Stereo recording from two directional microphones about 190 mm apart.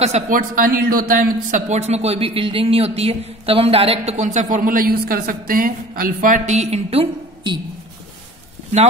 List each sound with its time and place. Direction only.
0.0 s a man's voice: 40° right (ahead or behind)